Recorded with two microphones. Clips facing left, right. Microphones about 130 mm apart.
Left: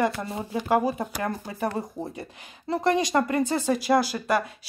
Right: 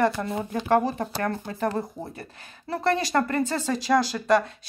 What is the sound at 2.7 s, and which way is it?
Speech, 15° left (ahead or behind).